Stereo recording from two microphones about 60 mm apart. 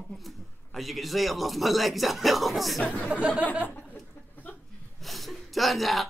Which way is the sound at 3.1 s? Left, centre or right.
Right.